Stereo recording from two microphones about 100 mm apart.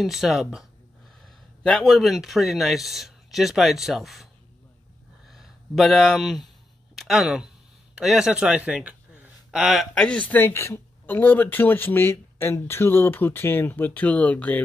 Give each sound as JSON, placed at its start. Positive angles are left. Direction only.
{"t": 0.0, "sound": "speech", "side_deg": 0}
{"t": 5.3, "sound": "speech", "side_deg": 0}
{"t": 10.0, "sound": "speech", "side_deg": 15}